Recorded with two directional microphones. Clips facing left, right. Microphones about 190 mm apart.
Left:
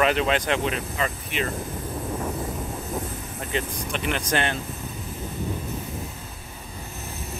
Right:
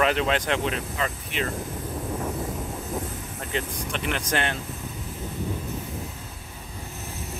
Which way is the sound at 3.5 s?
15° left (ahead or behind).